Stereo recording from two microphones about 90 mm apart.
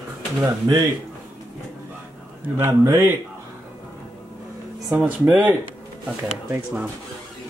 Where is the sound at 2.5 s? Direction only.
30° right (ahead or behind).